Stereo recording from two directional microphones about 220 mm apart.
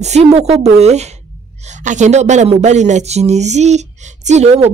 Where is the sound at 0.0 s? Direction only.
30° right (ahead or behind).